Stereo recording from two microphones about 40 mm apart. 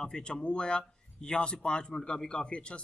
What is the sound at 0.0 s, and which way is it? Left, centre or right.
Speech, centre.